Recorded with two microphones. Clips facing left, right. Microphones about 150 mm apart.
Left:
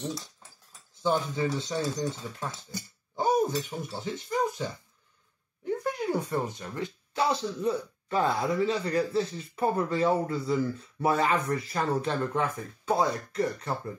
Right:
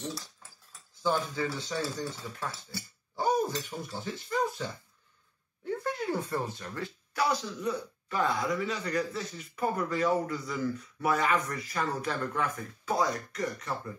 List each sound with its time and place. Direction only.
0.1 s speech: 20° left (ahead or behind)
5.7 s speech: 15° left (ahead or behind)